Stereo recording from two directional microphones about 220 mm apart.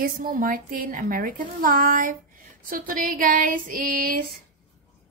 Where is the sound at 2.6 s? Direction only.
40° right (ahead or behind).